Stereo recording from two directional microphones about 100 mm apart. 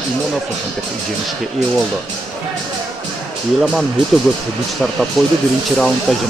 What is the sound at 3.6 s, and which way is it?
Speech, centre (ahead or behind).